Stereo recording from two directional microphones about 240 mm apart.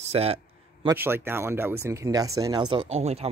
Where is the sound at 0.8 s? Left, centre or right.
Centre.